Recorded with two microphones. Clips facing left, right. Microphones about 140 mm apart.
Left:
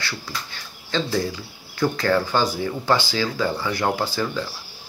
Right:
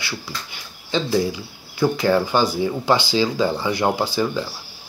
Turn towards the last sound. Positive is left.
turn(degrees=-15)  # may be behind; listen again after turning